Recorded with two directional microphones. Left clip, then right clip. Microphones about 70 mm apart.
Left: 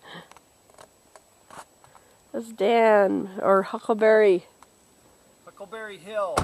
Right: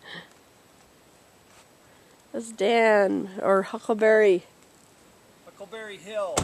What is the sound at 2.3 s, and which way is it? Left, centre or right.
Speech, centre.